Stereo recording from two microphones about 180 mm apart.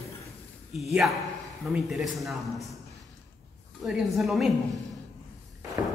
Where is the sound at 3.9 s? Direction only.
Centre (ahead or behind).